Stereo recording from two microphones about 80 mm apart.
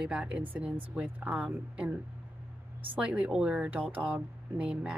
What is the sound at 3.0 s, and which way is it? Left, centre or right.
Speech, centre.